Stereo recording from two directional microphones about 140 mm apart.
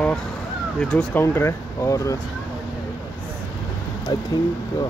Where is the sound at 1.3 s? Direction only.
20° left (ahead or behind).